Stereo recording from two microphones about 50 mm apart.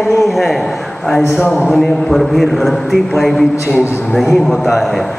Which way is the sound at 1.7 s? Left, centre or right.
Centre.